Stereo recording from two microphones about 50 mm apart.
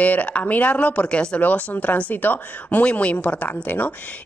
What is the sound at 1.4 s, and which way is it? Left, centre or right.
A woman's voice, left.